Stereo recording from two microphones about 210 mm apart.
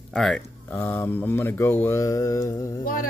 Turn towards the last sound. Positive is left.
turn(degrees=40)  # may be behind; listen again after turning